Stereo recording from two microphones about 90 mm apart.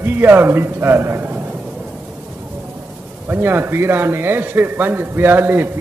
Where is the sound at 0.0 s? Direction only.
20° right (ahead or behind).